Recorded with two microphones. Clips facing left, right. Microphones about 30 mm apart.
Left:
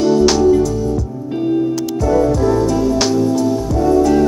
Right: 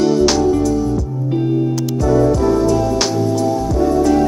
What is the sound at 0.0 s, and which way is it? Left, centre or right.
Music, centre.